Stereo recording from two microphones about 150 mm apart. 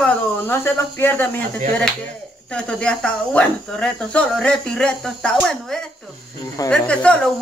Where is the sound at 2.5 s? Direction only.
5° left (ahead or behind).